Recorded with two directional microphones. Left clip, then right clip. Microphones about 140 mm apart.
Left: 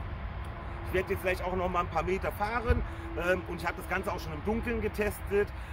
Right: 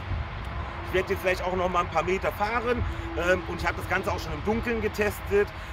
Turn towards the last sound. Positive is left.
turn(degrees=0)  # may be behind; listen again after turning